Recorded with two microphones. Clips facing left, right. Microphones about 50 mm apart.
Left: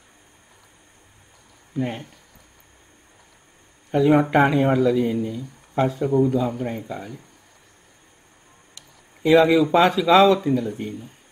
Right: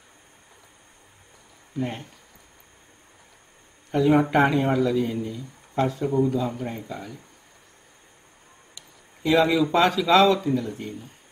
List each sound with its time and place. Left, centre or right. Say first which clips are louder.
1.8 s speech: left 3 dB; left
3.9 s speech: left 2 dB; centre
6.0 s a man's voice: left 4 dB; centre
6.3 s speech: left 4 dB; centre
9.2 s speech: left 5 dB; centre